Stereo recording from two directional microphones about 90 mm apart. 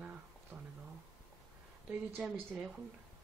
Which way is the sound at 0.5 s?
35° right (ahead or behind).